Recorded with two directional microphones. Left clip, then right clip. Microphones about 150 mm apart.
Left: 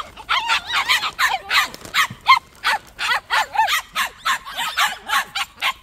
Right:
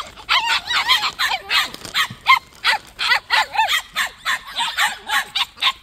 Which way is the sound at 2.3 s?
60° right (ahead or behind).